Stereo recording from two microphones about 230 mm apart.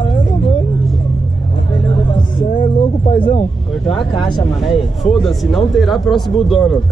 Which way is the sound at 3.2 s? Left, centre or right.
Left.